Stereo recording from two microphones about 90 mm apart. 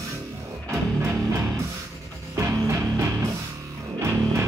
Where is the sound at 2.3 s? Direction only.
35° right (ahead or behind).